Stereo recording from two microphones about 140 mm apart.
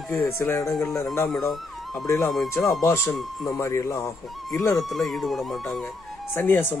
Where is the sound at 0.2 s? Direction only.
20° left (ahead or behind).